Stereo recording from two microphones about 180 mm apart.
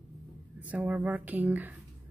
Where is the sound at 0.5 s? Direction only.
10° right (ahead or behind).